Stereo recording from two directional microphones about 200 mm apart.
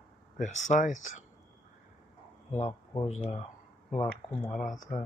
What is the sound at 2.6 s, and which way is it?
Speech, 30° left (ahead or behind).